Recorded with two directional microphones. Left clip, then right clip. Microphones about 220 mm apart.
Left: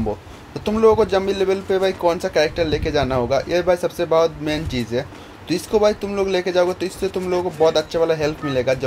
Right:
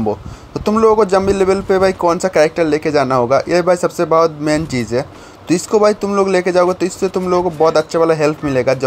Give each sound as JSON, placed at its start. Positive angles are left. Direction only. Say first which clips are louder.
{"t": 0.7, "sound": "speech", "louder": "right 4 dB", "side_deg": -30}